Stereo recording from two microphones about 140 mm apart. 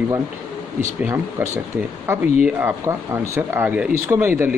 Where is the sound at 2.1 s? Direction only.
20° right (ahead or behind).